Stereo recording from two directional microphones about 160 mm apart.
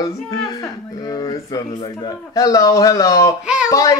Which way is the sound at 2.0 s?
20° left (ahead or behind).